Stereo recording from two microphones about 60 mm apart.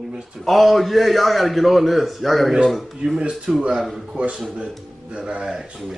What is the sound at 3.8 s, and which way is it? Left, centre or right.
Speech, centre.